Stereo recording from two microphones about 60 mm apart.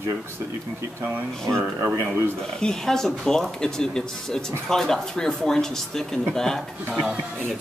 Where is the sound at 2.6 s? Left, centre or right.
Centre.